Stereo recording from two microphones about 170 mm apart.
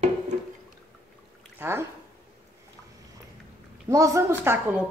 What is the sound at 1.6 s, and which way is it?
Speech, 15° right (ahead or behind).